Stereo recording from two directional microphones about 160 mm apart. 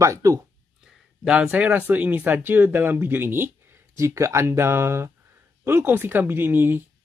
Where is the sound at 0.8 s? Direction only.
5° right (ahead or behind).